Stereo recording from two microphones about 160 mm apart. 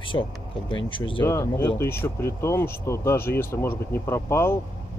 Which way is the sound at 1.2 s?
15° left (ahead or behind).